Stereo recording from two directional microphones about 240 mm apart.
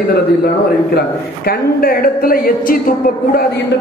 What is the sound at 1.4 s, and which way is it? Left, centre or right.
A man's voice, left.